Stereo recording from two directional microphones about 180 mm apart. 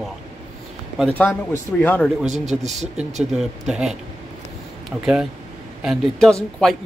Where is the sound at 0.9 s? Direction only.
5° left (ahead or behind).